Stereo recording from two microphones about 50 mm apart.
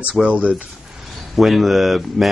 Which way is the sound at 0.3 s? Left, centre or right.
Right.